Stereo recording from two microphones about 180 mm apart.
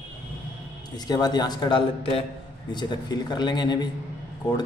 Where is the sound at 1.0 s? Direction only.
20° left (ahead or behind).